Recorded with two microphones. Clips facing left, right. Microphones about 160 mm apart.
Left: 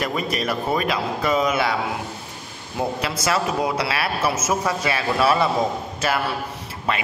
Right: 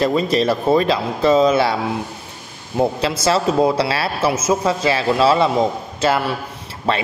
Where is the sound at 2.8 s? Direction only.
30° right (ahead or behind).